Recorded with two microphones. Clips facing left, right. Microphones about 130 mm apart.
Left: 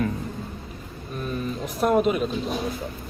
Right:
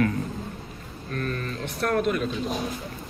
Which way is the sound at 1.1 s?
10° left (ahead or behind).